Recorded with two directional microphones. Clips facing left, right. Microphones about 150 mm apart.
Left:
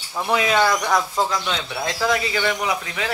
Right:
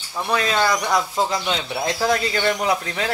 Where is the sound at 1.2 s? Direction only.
25° right (ahead or behind).